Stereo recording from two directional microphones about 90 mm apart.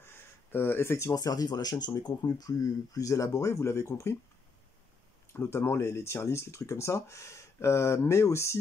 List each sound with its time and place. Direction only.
0.0 s speech: 25° left (ahead or behind)
5.3 s speech: 30° left (ahead or behind)